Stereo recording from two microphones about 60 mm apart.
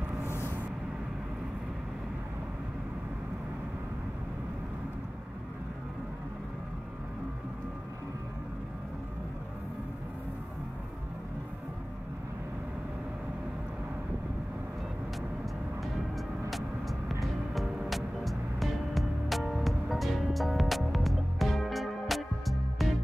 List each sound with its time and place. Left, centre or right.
0.3 s vehicle: left
16.4 s music: centre